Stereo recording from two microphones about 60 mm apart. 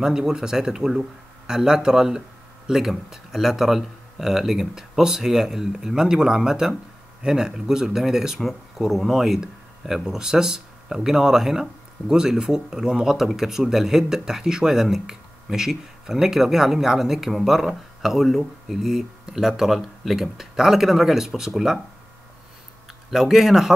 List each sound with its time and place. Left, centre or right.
0.0 s speech: centre
23.0 s speech: centre